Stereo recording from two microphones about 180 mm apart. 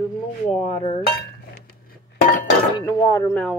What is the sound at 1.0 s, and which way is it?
Chink, 60° left (ahead or behind).